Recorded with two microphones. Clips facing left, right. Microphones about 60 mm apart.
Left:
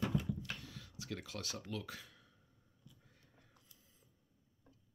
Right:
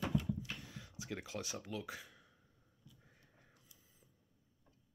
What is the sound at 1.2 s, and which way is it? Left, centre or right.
Speech, centre.